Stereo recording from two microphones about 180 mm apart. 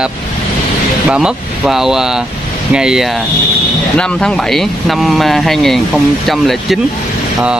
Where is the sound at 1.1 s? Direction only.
5° right (ahead or behind).